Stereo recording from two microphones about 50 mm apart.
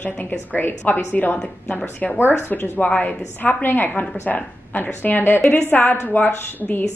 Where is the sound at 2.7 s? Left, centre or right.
Left.